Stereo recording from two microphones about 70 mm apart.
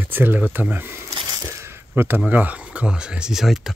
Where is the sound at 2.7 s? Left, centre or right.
Centre.